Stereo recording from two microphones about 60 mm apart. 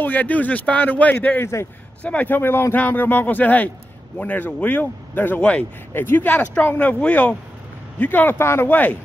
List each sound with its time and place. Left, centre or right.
0.0 s speech: left
1.4 s speech: left
2.0 s speech: left
2.3 s speech: left
5.4 s speech: centre
5.9 s speech: left
6.3 s speech: left
8.4 s speech: left
8.6 s speech: left